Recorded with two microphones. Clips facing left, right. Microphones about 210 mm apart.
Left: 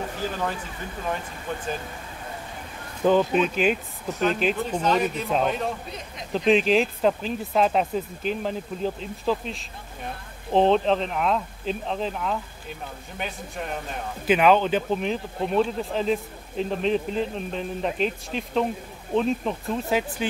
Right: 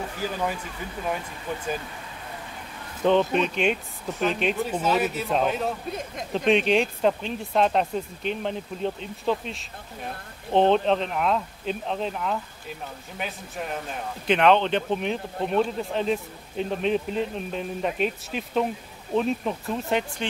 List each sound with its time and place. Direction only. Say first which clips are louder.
0.2 s speech: right 1 dB; 10° right (ahead or behind)
3.0 s speech: left 1 dB; 5° left (ahead or behind)
5.9 s speech: right 5 dB; 50° right (ahead or behind)
6.3 s speech: left 1 dB; centre (ahead or behind)